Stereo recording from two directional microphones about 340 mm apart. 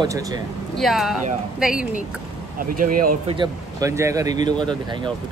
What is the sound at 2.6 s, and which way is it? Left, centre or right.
Speech, right.